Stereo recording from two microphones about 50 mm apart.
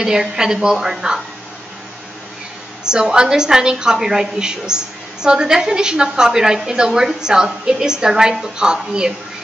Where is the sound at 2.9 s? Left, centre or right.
Centre.